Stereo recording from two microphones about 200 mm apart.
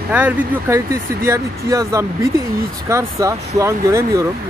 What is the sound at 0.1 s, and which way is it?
Speech, 5° right (ahead or behind).